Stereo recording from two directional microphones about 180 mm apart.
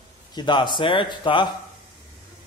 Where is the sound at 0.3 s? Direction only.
25° left (ahead or behind).